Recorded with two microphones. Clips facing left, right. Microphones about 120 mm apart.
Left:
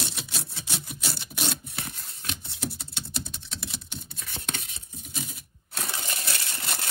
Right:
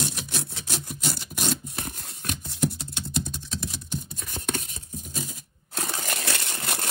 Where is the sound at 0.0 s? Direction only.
55° right (ahead or behind).